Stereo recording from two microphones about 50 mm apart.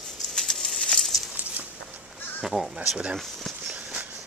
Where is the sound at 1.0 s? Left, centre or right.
Centre.